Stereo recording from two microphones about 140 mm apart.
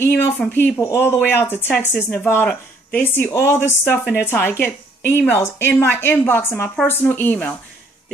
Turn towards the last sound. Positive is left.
turn(degrees=10)  # may be behind; listen again after turning